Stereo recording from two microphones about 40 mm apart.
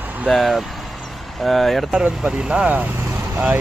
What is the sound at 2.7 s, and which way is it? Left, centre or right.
Speech, right.